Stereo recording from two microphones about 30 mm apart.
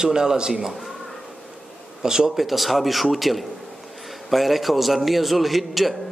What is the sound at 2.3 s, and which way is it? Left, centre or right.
A man's voice, centre.